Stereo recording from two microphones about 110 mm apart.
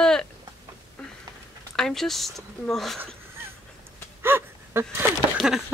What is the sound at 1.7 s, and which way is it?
A woman's voice, 5° left (ahead or behind).